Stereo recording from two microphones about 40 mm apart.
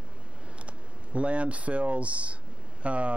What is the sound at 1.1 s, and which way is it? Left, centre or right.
A man's voice, right.